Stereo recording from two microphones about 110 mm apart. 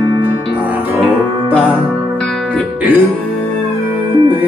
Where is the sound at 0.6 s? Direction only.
15° right (ahead or behind).